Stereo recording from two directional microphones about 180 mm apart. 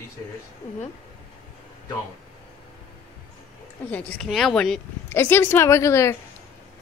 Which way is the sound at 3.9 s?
5° left (ahead or behind).